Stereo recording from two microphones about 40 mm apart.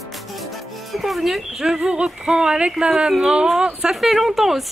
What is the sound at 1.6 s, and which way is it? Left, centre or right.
Speech, centre.